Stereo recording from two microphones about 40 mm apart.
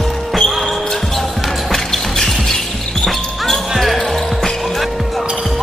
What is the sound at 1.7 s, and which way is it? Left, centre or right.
Music, centre.